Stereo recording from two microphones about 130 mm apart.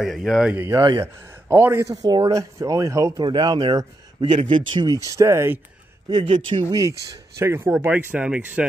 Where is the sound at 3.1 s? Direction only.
35° right (ahead or behind).